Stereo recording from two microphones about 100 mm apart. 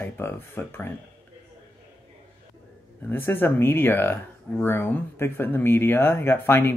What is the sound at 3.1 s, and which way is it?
Speech, 20° left (ahead or behind).